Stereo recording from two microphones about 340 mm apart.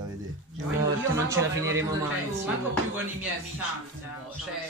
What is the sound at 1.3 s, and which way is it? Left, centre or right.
Speech, centre.